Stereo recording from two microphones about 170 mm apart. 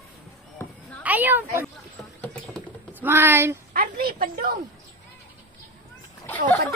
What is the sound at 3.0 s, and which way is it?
Speech, 10° right (ahead or behind).